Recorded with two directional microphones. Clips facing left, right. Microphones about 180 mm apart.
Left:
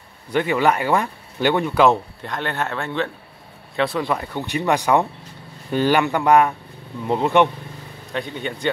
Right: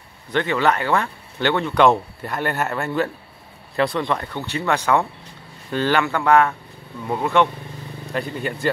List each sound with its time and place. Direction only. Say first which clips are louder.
0.3 s speech: left 1 dB; 10° left (ahead or behind)
2.2 s speech: right 2 dB; 5° right (ahead or behind); by 7.4 s 20° left (ahead or behind)
8.1 s speech: right 1 dB; centre (ahead or behind)